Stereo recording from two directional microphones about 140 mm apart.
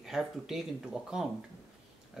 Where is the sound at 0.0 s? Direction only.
5° right (ahead or behind).